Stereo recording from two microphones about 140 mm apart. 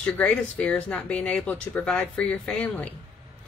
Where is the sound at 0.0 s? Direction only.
10° left (ahead or behind).